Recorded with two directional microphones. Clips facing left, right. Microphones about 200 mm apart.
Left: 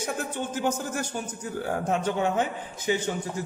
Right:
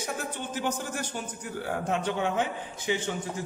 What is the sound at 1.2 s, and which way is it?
A man's voice, 45° left (ahead or behind).